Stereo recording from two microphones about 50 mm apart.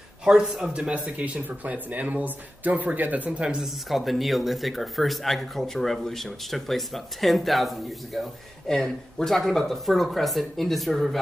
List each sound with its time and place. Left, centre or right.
0.2 s speech: centre; by 3.3 s right
3.3 s speech: centre
3.6 s speech: centre